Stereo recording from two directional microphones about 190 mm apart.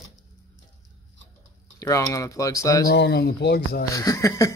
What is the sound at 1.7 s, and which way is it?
Speech, 15° left (ahead or behind).